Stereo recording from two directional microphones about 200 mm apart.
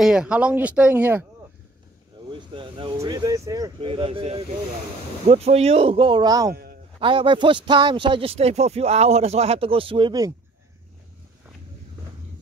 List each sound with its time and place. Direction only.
0.0 s speech: 5° right (ahead or behind)
2.3 s a man's voice: 25° right (ahead or behind)
6.5 s a sound: 50° right (ahead or behind)
7.0 s a man's voice: 25° right (ahead or behind)